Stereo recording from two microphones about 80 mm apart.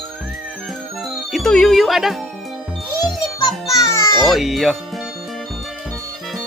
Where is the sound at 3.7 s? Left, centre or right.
Left.